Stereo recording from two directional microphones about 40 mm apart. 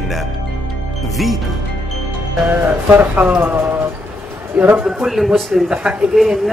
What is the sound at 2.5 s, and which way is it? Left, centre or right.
Speech, right.